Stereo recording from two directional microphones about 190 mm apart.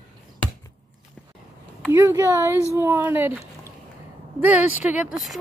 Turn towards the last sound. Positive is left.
turn(degrees=-5)  # may be behind; listen again after turning